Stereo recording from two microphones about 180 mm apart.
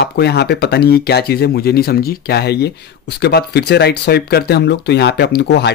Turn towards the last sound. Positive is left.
turn(degrees=70)  # may be behind; listen again after turning